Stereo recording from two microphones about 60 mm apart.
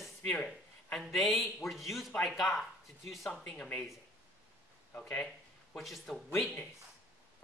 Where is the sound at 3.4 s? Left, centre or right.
Centre.